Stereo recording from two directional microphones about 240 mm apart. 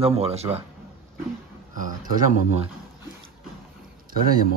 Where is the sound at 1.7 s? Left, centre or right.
Right.